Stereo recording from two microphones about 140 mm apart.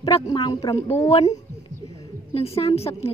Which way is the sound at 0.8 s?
15° left (ahead or behind).